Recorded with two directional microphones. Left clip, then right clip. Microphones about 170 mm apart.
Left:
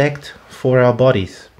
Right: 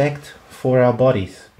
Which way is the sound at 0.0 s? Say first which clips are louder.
Left 2 dB; 25° left (ahead or behind).